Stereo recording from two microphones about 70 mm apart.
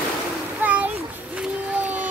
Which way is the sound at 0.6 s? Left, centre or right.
Right.